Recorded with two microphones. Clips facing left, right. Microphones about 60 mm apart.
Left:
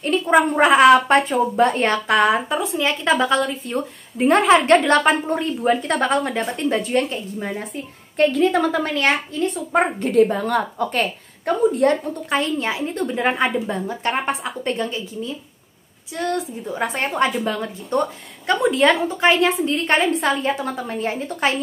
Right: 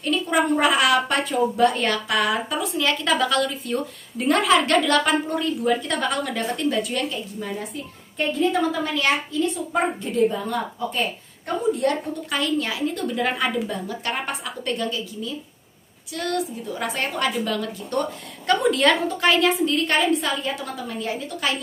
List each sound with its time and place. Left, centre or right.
0.0 s a woman's voice: left
8.5 s a woman's voice: left
11.4 s a woman's voice: left